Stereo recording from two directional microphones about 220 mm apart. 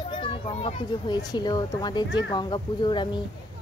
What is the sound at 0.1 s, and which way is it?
A child's voice, 25° left (ahead or behind).